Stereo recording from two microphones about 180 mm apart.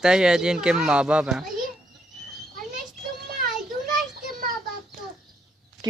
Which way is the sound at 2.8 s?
50° right (ahead or behind).